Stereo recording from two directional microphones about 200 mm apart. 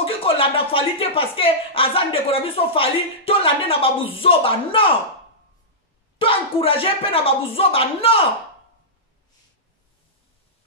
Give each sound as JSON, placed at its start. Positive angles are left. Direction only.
{"t": 0.0, "sound": "speech", "side_deg": 25}
{"t": 6.1, "sound": "speech", "side_deg": 25}